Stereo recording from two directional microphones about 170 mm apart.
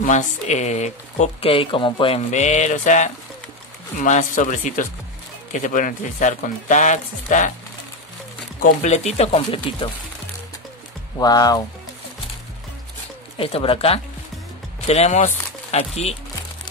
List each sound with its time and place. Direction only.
0.0 s speech: 45° left (ahead or behind)
8.5 s speech: 40° left (ahead or behind)
11.1 s speech: 20° left (ahead or behind)
13.4 s speech: 35° left (ahead or behind)